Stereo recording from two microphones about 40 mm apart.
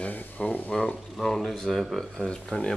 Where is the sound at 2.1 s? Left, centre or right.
Centre.